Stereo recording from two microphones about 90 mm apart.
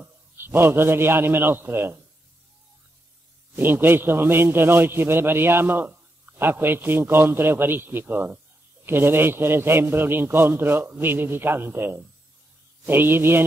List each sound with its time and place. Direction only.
0.0 s a man's voice: 25° right (ahead or behind)
3.5 s a man's voice: 25° right (ahead or behind)